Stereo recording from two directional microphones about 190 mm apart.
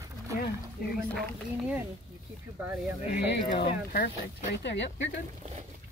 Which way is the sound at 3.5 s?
50° left (ahead or behind).